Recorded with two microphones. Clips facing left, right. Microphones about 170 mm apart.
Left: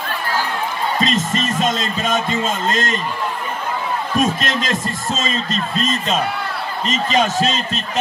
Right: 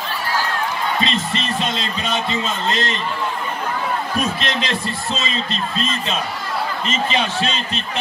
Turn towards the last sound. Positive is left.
turn(degrees=40)  # may be behind; listen again after turning